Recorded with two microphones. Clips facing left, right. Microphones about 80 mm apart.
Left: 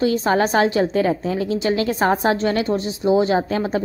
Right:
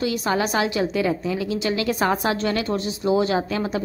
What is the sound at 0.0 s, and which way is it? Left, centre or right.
A woman's voice, left.